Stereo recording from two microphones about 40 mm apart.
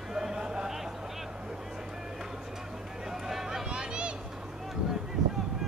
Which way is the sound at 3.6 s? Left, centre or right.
Right.